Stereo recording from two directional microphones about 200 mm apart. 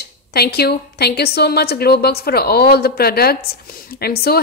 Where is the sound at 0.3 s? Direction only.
50° left (ahead or behind).